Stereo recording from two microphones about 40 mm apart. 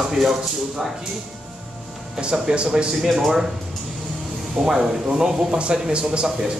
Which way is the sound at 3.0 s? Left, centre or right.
Centre.